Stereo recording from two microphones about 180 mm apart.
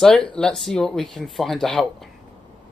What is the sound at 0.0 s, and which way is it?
Speech, 5° left (ahead or behind).